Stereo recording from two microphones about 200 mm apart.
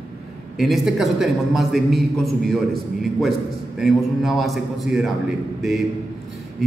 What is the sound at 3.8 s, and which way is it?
A man's voice, centre (ahead or behind).